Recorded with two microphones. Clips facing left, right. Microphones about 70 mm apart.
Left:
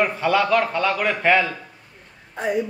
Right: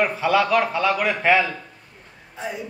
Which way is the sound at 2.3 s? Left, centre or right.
Left.